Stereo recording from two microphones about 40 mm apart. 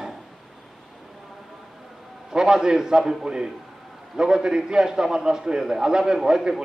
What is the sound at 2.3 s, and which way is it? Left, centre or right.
A man's voice, centre.